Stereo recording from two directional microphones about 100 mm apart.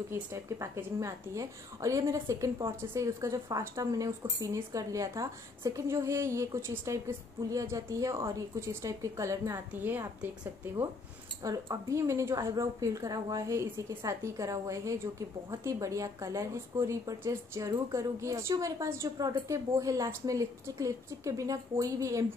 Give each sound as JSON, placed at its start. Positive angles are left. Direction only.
{"t": 0.1, "sound": "speech", "side_deg": -25}
{"t": 9.8, "sound": "a woman's voice", "side_deg": -20}
{"t": 11.4, "sound": "speech", "side_deg": -35}